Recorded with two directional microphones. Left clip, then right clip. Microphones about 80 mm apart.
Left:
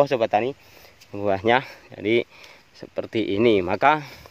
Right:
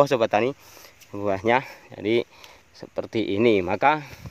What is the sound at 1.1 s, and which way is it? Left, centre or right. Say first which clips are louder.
Speech: left 2 dB; centre.